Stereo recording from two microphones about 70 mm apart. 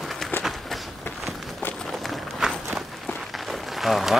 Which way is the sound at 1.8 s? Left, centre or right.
Centre.